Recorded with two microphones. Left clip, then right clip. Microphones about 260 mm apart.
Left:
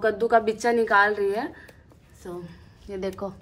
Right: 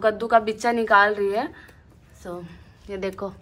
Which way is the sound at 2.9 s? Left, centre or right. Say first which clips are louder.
Right 2 dB; centre.